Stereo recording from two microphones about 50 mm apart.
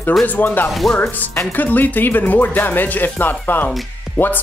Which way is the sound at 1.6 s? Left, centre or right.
Left.